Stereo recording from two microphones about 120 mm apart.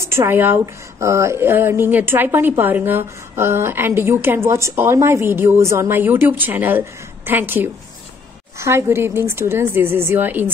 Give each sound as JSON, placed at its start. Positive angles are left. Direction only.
{"t": 0.0, "sound": "a woman's voice", "side_deg": -25}